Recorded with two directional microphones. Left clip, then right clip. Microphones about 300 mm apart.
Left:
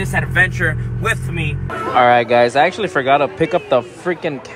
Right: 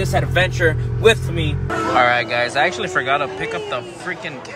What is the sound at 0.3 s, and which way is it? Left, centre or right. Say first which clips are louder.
Speech: left 3 dB; centre.